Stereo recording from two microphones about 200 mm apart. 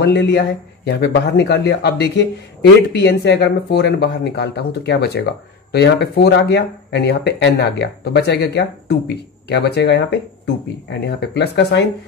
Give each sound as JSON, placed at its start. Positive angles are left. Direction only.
{"t": 0.0, "sound": "speech", "side_deg": 55}